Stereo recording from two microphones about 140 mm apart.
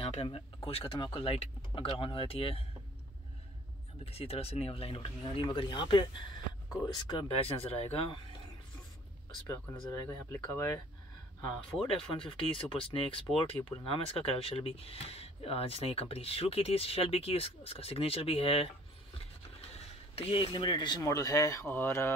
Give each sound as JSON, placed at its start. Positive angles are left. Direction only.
{"t": 0.0, "sound": "speech", "side_deg": 45}
{"t": 4.0, "sound": "speech", "side_deg": 45}
{"t": 9.5, "sound": "speech", "side_deg": 15}
{"t": 11.9, "sound": "speech", "side_deg": 40}
{"t": 19.7, "sound": "speech", "side_deg": 40}